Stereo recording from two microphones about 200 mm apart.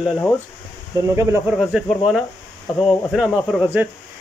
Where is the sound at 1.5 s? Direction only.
Centre (ahead or behind).